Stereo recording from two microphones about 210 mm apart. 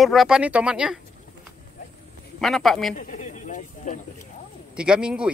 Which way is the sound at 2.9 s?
35° left (ahead or behind).